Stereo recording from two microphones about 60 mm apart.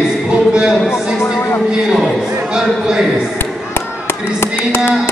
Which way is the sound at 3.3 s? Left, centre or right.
Left.